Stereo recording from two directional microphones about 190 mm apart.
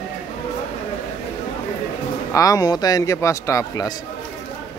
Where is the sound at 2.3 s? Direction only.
20° left (ahead or behind).